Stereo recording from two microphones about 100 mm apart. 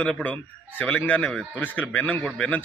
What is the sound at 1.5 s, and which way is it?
Speech, 20° left (ahead or behind).